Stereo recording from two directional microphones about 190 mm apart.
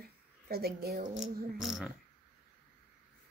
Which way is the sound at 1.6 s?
Centre (ahead or behind).